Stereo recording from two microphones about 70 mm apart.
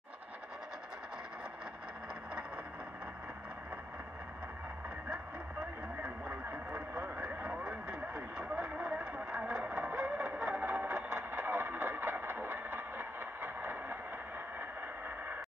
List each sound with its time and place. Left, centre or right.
6.0 s vehicle: right